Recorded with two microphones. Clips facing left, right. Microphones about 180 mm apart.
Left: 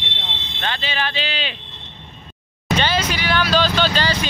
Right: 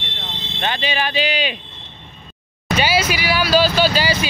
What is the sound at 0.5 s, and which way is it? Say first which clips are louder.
Speech: right 3 dB; 15° right (ahead or behind).